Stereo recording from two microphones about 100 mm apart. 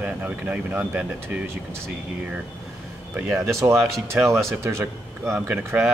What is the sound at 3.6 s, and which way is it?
A man's voice, 25° right (ahead or behind).